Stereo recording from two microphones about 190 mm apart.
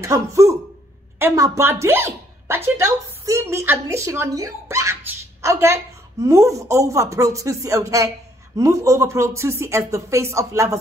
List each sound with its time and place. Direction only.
0.0 s a woman's voice: 15° right (ahead or behind)